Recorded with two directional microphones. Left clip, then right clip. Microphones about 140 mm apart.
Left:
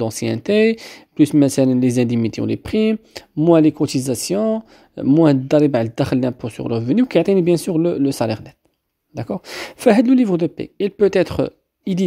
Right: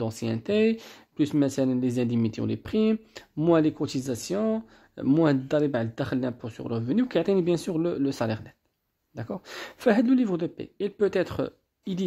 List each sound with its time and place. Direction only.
0.0 s speech: 40° left (ahead or behind)